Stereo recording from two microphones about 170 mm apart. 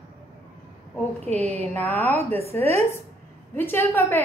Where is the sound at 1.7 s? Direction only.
10° left (ahead or behind).